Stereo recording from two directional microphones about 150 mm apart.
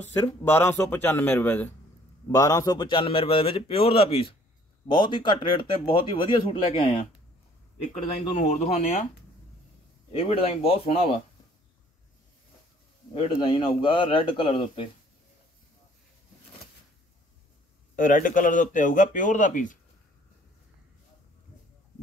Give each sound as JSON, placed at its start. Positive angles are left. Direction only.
{"t": 0.1, "sound": "speech", "side_deg": 15}
{"t": 2.3, "sound": "speech", "side_deg": 20}
{"t": 7.9, "sound": "speech", "side_deg": 55}
{"t": 10.1, "sound": "speech", "side_deg": 40}
{"t": 13.1, "sound": "speech", "side_deg": 35}
{"t": 17.9, "sound": "speech", "side_deg": 65}